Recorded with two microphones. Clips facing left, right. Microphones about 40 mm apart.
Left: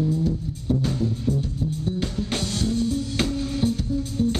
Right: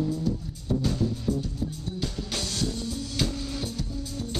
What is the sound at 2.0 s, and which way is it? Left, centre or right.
Music, left.